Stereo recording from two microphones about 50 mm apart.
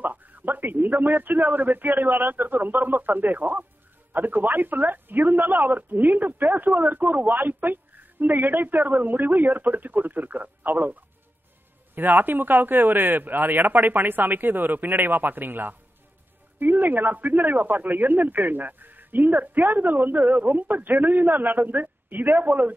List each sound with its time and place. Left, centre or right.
0.0 s a man's voice: right